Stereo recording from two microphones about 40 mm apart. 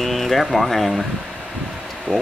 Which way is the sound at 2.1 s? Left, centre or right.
Left.